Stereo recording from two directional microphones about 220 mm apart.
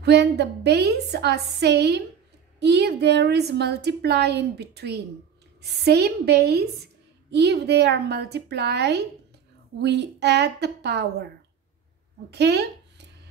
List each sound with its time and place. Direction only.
0.0 s a woman's voice: 50° right (ahead or behind)
12.3 s speech: 50° right (ahead or behind)